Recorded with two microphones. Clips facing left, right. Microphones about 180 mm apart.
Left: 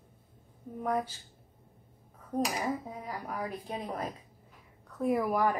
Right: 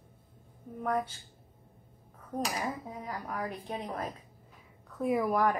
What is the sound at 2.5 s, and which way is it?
Speech, 15° left (ahead or behind).